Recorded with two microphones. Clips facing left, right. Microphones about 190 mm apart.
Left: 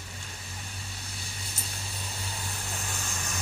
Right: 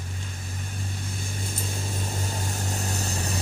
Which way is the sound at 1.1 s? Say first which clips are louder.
Right 8 dB; 50° right (ahead or behind).